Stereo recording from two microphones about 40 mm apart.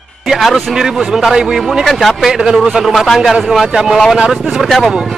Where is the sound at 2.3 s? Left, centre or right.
Centre.